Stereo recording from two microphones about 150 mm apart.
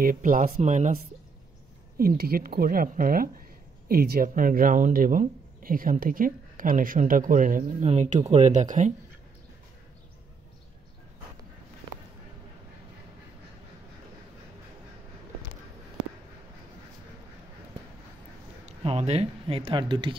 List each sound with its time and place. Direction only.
0.0 s speech: 65° right (ahead or behind)
2.0 s a woman's voice: 90° right; by 8.9 s 55° right (ahead or behind)
18.7 s speech: 45° right (ahead or behind)